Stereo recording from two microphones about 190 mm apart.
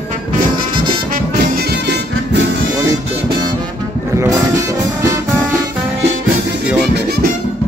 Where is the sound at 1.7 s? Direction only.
65° right (ahead or behind).